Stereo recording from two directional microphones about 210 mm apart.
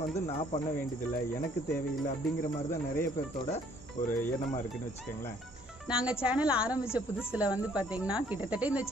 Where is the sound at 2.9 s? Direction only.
45° left (ahead or behind).